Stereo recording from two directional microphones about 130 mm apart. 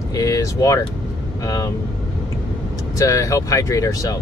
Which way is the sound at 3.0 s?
25° left (ahead or behind).